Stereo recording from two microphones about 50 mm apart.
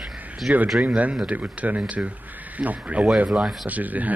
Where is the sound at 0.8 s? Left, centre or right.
Right.